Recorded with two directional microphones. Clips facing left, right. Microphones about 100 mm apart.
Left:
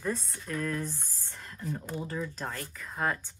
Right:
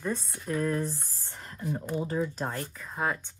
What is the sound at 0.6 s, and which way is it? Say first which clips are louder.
Speech: right 4 dB; 30° right (ahead or behind).